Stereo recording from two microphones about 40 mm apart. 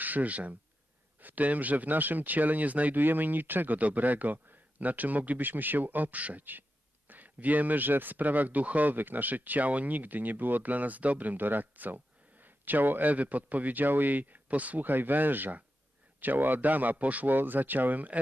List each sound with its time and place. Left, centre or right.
0.0 s speech: right
3.0 s speech: right
5.5 s speech: right
14.9 s speech: right